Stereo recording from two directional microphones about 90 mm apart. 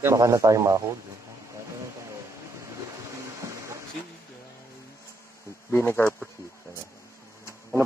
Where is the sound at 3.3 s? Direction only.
30° right (ahead or behind).